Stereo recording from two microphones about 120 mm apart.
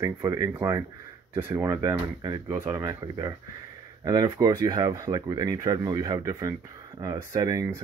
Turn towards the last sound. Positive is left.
turn(degrees=-30)  # may be behind; listen again after turning